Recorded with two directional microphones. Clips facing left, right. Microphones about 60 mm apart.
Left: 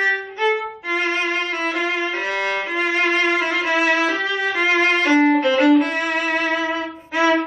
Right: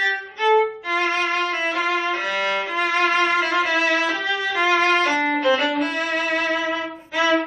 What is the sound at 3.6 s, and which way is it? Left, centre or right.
Violin, left.